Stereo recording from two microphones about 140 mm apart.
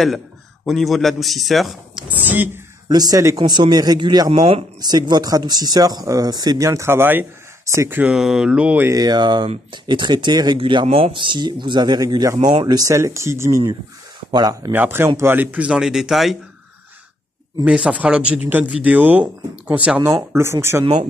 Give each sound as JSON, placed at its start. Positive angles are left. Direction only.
{"t": 0.7, "sound": "a man's voice", "side_deg": 0}
{"t": 2.9, "sound": "speech", "side_deg": -25}
{"t": 4.3, "sound": "speech", "side_deg": -45}
{"t": 4.7, "sound": "speech", "side_deg": -30}
{"t": 8.0, "sound": "speech", "side_deg": -5}
{"t": 8.9, "sound": "speech", "side_deg": -30}
{"t": 17.6, "sound": "speech", "side_deg": -10}